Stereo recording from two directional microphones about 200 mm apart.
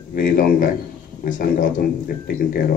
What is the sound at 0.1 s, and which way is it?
Speech, 45° left (ahead or behind).